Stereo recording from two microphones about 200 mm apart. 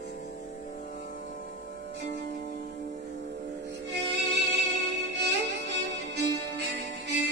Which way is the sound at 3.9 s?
60° right (ahead or behind).